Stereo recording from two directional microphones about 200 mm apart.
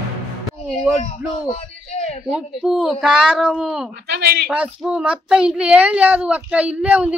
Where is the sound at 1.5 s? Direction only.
35° left (ahead or behind).